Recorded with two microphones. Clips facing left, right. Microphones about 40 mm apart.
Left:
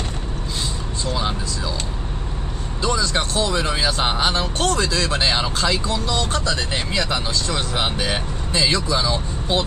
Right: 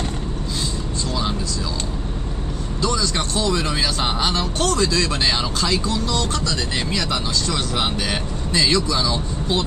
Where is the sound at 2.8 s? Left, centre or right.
Left.